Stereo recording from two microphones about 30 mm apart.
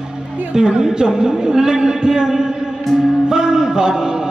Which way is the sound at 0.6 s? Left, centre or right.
Right.